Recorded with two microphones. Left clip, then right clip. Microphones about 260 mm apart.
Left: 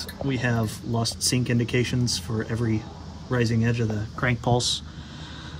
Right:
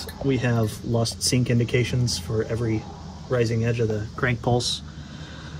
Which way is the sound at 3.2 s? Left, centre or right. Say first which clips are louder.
Right 2 dB; centre.